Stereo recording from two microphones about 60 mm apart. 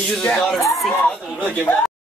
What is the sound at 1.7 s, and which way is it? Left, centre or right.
Speech, left.